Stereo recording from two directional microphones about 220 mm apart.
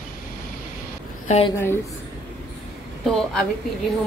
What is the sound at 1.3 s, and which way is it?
Speech, 30° left (ahead or behind).